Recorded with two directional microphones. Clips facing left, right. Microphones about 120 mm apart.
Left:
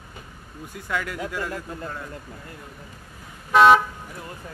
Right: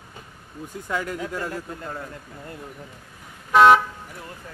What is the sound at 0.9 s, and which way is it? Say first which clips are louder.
Speech: right 1 dB; 35° right (ahead or behind).